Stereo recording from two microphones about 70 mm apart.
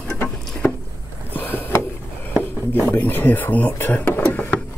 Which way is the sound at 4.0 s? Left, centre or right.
Left.